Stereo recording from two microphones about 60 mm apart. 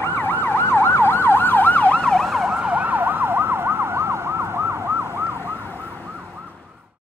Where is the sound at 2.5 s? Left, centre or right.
Right.